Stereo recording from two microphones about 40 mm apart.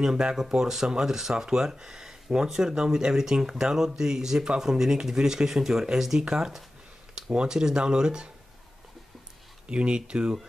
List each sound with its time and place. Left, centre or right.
0.0 s speech: centre
9.7 s speech: right